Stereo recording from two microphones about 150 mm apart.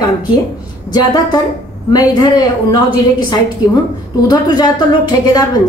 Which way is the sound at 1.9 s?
25° left (ahead or behind).